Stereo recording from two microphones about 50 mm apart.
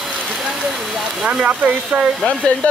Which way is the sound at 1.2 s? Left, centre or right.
Right.